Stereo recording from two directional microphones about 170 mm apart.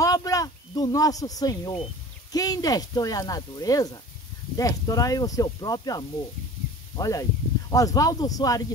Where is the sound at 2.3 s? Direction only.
20° left (ahead or behind).